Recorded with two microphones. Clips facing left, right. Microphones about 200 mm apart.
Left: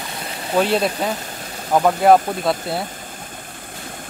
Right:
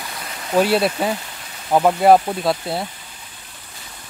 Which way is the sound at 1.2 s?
45° left (ahead or behind).